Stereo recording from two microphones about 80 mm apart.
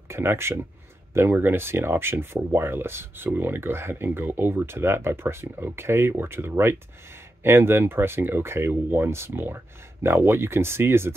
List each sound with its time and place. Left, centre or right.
0.1 s speech: right